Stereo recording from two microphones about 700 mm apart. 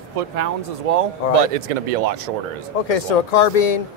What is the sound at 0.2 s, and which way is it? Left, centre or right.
Speech, right.